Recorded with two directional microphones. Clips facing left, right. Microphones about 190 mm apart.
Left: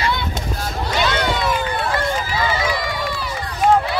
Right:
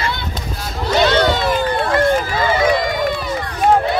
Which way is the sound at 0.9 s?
35° right (ahead or behind).